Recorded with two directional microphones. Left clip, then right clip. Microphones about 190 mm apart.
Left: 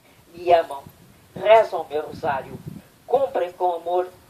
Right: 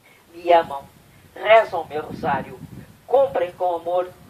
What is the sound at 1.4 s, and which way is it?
Speech, 45° left (ahead or behind).